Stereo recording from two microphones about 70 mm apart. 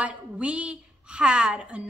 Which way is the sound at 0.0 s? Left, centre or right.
Centre.